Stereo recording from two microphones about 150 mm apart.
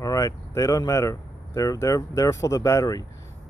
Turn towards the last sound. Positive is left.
turn(degrees=20)  # may be behind; listen again after turning